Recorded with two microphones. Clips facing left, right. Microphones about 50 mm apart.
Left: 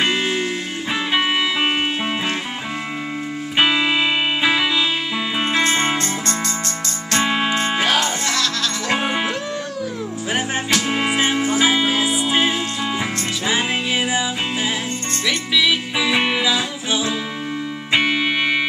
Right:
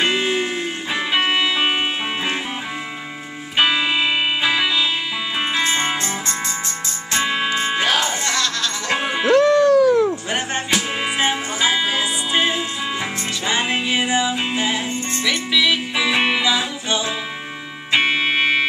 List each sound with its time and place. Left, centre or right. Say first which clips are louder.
0.0 s music: even; centre
3.5 s music: even; centre
5.4 s music: left 2 dB; centre
7.2 s music: left 1 dB; centre
9.3 s music: right 13 dB; right
10.7 s music: left 3 dB; centre
18.0 s music: right 1 dB; centre